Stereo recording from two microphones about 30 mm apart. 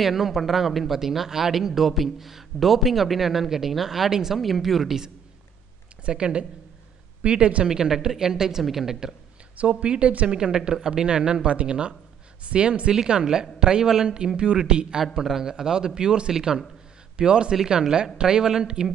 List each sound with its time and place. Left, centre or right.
0.0 s speech: centre
4.4 s speech: centre
6.0 s speech: right
7.6 s speech: right
9.8 s speech: right
12.9 s speech: right
14.3 s speech: right